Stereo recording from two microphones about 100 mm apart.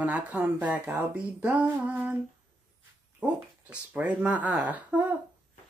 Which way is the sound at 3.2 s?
15° right (ahead or behind).